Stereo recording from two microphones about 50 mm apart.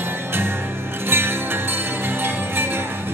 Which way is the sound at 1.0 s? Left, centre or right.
Right.